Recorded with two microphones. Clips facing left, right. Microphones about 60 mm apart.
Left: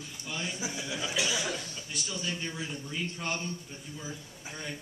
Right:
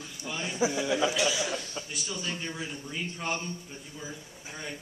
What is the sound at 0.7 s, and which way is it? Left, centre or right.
Speech, right.